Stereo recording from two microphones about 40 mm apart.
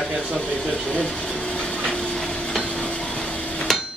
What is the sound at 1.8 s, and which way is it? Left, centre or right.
Stir, centre.